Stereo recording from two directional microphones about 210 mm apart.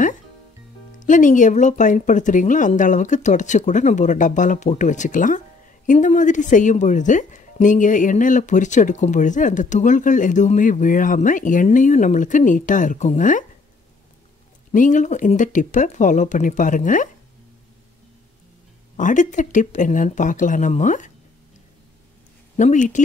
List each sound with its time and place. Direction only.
0.9 s a woman's voice: 35° left (ahead or behind)
14.7 s a woman's voice: 35° left (ahead or behind)
18.9 s a woman's voice: 35° left (ahead or behind)
22.6 s a woman's voice: 35° left (ahead or behind)